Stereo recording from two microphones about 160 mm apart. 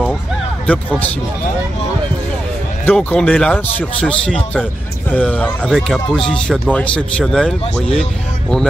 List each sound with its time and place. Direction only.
0.7 s a man's voice: 10° left (ahead or behind)
2.8 s a man's voice: 10° left (ahead or behind)